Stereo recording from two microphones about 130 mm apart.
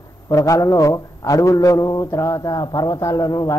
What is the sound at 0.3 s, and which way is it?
A man's voice, 25° left (ahead or behind).